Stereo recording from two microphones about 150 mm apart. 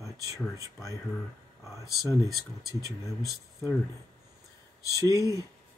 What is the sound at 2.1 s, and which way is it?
Speech, 25° right (ahead or behind).